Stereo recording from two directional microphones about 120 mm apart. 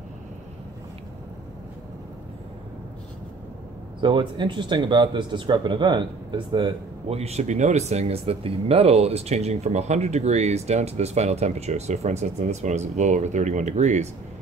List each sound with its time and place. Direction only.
4.0 s speech: 40° right (ahead or behind)
7.2 s speech: 65° right (ahead or behind)